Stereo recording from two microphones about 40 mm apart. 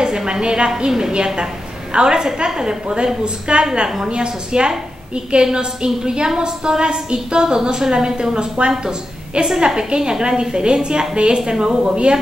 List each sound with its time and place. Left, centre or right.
0.0 s a woman's voice: centre